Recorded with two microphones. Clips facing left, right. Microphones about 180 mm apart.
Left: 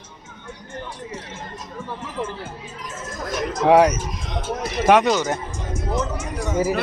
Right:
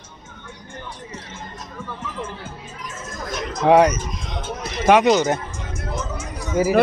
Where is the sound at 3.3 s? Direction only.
5° left (ahead or behind).